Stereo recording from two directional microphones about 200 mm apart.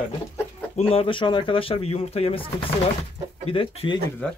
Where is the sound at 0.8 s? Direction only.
30° left (ahead or behind).